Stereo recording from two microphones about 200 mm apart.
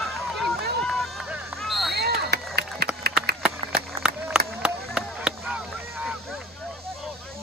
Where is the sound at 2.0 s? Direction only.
55° right (ahead or behind).